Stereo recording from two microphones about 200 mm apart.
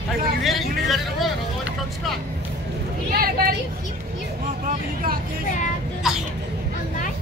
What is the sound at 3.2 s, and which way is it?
Vehicle, 50° right (ahead or behind).